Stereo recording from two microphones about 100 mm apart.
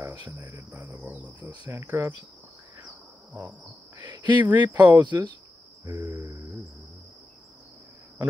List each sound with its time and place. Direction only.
0.0 s cricket: 30° right (ahead or behind)
0.6 s speech: 25° right (ahead or behind)
1.7 s cricket: 25° right (ahead or behind)
4.0 s speech: 50° right (ahead or behind)
4.5 s speech: 15° right (ahead or behind)
5.0 s speech: 50° right (ahead or behind)